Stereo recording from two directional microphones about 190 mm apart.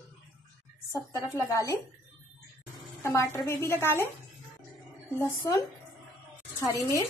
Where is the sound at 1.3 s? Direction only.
15° left (ahead or behind).